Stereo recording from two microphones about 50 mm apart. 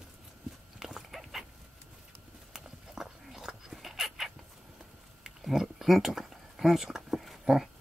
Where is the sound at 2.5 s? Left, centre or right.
Centre.